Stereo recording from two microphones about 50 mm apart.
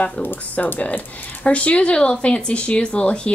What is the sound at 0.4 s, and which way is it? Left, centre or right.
Speech, left.